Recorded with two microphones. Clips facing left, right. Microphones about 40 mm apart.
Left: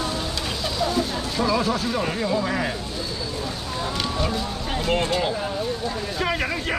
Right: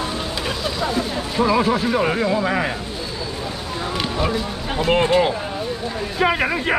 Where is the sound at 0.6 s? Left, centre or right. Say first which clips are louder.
Even; centre.